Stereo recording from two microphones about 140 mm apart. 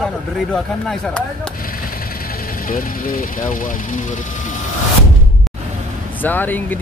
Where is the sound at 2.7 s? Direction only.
80° left.